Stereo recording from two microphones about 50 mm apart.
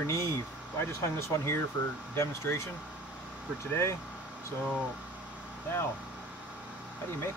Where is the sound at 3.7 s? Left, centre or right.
Left.